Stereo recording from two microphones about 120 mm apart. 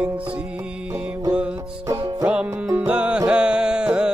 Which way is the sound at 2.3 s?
10° right (ahead or behind).